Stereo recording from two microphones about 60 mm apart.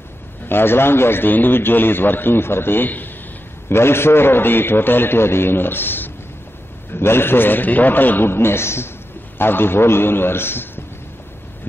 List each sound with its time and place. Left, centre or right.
0.5 s a man's voice: left
3.6 s a man's voice: left